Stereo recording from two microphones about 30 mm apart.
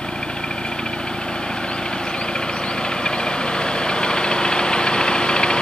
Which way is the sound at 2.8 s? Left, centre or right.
Left.